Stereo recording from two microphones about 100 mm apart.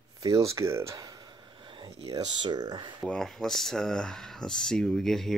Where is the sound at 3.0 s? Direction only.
5° left (ahead or behind).